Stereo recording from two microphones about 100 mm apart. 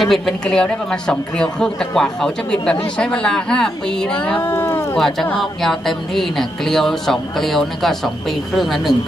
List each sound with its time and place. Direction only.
0.0 s speech: 5° left (ahead or behind)
4.2 s speech: 20° left (ahead or behind)
4.9 s speech: 5° left (ahead or behind)